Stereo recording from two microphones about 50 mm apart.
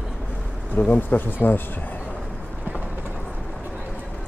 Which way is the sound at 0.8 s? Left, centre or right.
Left.